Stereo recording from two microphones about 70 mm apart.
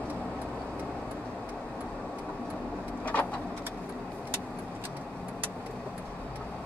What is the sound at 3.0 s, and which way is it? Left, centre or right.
Vehicle, left.